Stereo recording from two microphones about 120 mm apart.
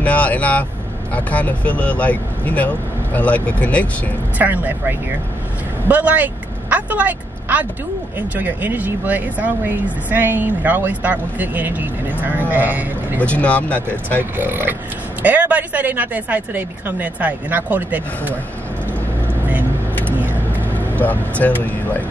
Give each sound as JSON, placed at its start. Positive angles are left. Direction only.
{"t": 0.0, "sound": "speech", "side_deg": 10}
{"t": 4.4, "sound": "a woman's voice", "side_deg": -15}
{"t": 13.2, "sound": "speech", "side_deg": 10}
{"t": 14.3, "sound": "speech", "side_deg": -15}
{"t": 20.7, "sound": "speech", "side_deg": 15}